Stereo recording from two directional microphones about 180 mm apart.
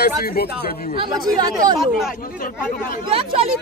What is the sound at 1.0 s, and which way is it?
Speech, 25° right (ahead or behind).